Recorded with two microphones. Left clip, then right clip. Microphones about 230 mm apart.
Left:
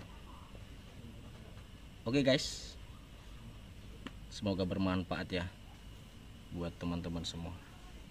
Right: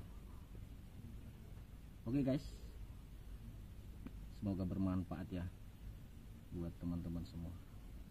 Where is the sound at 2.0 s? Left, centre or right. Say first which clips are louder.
Left 9 dB; left.